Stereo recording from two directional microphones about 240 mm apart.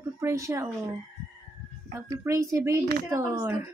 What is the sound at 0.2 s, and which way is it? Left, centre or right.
Speech, centre.